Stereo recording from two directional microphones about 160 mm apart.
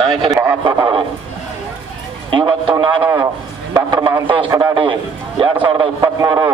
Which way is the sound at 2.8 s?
30° right (ahead or behind).